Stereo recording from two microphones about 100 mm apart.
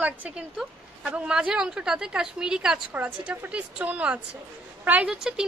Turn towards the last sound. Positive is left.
turn(degrees=-5)  # may be behind; listen again after turning